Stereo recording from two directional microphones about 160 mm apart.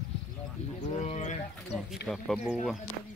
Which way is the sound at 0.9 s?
45° left (ahead or behind).